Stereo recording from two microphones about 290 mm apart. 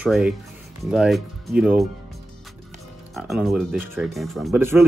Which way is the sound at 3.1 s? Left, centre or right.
Centre.